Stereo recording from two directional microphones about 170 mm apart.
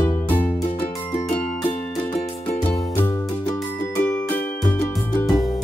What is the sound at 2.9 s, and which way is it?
Music, 15° left (ahead or behind).